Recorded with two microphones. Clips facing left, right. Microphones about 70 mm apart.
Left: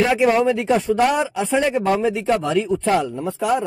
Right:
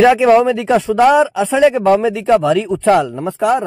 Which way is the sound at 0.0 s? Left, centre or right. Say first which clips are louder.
Right 7 dB; right.